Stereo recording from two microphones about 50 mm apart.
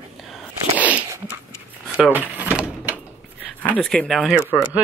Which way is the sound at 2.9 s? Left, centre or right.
Right.